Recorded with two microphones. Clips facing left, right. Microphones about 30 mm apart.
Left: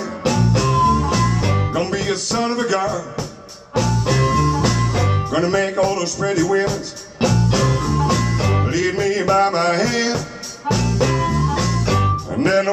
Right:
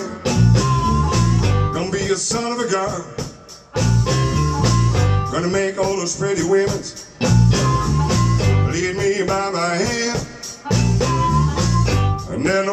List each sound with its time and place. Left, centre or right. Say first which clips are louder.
0.2 s music: left 1 dB; centre
1.7 s music: even; centre
3.7 s music: left 1 dB; centre
5.9 s music: left 1 dB; left
6.3 s speech: right 1 dB; centre
7.4 s music: even; centre
9.4 s music: left 4 dB; left
11.0 s music: even; centre